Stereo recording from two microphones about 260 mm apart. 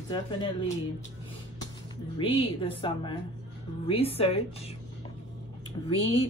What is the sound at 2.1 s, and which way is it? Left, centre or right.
Speech, left.